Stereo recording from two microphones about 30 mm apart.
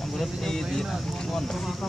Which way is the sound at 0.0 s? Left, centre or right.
Centre.